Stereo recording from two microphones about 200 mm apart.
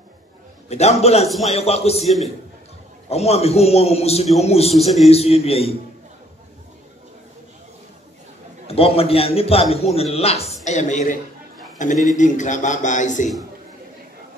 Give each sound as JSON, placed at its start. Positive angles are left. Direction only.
{"t": 0.7, "sound": "a man's voice", "side_deg": 30}
{"t": 2.0, "sound": "a man's voice", "side_deg": 0}
{"t": 3.1, "sound": "a man's voice", "side_deg": 30}
{"t": 4.7, "sound": "a man's voice", "side_deg": 0}
{"t": 5.0, "sound": "a man's voice", "side_deg": 30}
{"t": 8.6, "sound": "a man's voice", "side_deg": 30}